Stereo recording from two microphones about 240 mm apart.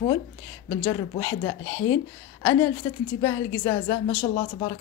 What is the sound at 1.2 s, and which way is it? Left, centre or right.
A woman's voice, centre.